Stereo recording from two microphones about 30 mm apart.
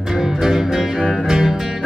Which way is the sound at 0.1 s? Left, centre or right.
Centre.